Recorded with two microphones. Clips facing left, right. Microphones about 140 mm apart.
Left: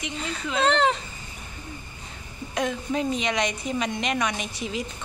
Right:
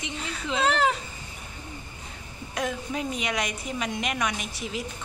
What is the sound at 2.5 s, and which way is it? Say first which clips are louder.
A woman's voice: left 3 dB; 5° right (ahead or behind).